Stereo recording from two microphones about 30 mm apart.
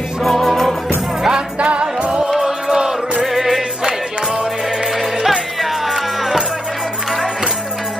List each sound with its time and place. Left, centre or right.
0.3 s music: centre
1.6 s music: right
2.4 s music: centre
3.3 s music: centre
5.6 s music: centre